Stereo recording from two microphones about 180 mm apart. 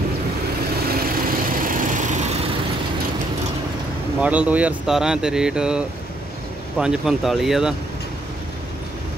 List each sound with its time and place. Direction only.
0.9 s vehicle: 50° right (ahead or behind)
4.2 s speech: 10° right (ahead or behind)